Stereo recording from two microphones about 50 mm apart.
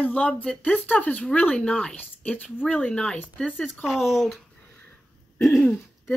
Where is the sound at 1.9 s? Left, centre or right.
Left.